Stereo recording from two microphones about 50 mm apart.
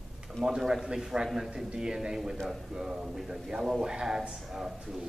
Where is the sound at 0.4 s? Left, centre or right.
Centre.